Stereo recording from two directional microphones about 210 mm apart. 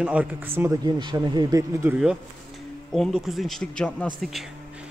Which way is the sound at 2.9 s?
Centre (ahead or behind).